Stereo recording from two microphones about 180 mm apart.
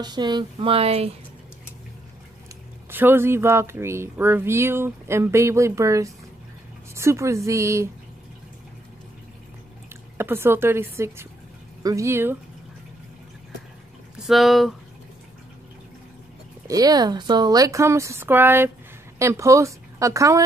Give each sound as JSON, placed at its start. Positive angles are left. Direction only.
{"t": 0.0, "sound": "speech", "side_deg": -25}
{"t": 2.9, "sound": "speech", "side_deg": -10}
{"t": 10.1, "sound": "speech", "side_deg": -10}
{"t": 14.2, "sound": "speech", "side_deg": 0}
{"t": 16.6, "sound": "speech", "side_deg": -20}